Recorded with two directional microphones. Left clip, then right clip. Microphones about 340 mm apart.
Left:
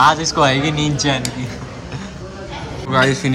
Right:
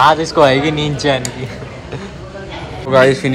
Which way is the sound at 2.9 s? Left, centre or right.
Centre.